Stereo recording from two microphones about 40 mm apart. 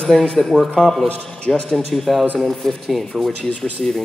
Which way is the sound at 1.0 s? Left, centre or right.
Left.